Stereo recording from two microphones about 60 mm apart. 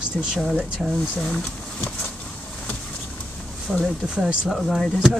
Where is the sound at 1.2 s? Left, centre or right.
Centre.